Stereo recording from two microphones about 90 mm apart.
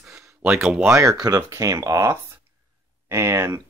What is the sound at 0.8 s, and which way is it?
Speech, 35° right (ahead or behind).